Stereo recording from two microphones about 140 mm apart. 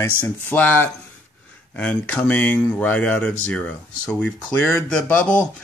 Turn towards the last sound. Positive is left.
turn(degrees=10)  # may be behind; listen again after turning